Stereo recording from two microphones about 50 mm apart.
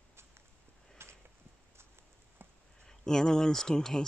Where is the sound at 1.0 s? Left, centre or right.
Right.